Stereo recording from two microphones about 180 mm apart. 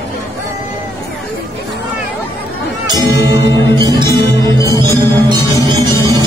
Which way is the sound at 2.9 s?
20° right (ahead or behind).